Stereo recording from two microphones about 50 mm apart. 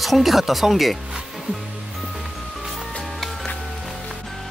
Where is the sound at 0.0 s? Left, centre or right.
Centre.